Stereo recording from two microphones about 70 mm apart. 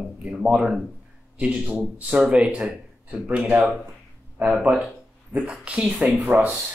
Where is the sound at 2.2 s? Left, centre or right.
Centre.